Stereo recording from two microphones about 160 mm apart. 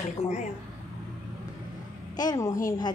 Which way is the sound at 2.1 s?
25° left (ahead or behind).